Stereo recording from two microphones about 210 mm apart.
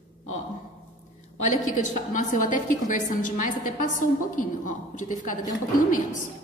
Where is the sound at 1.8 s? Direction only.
35° left (ahead or behind).